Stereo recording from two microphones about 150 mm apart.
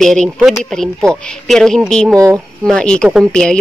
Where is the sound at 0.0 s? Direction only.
Centre (ahead or behind).